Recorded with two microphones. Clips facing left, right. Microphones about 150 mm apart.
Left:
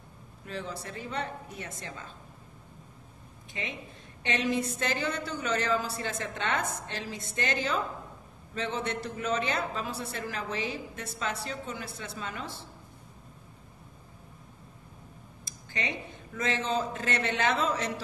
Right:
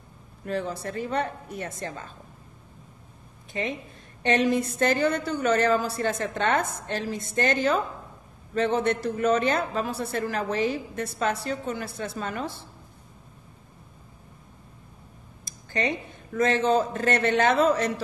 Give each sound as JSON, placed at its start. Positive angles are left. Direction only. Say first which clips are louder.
{"t": 0.5, "sound": "a woman's voice", "louder": "right 8 dB", "side_deg": -55}
{"t": 4.2, "sound": "a woman's voice", "louder": "right 7 dB", "side_deg": -50}
{"t": 16.3, "sound": "a woman's voice", "louder": "right 8 dB", "side_deg": -50}